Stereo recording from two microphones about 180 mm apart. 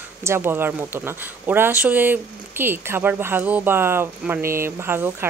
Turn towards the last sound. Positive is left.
turn(degrees=-10)  # may be behind; listen again after turning